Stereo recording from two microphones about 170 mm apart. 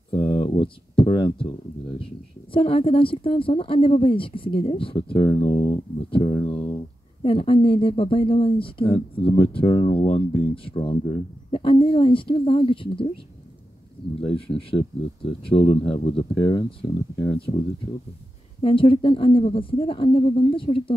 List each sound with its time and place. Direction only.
0.1 s a sound: 30° left (ahead or behind)
2.0 s speech: 30° left (ahead or behind)
14.3 s speech: 30° left (ahead or behind)
17.4 s speech: 30° left (ahead or behind)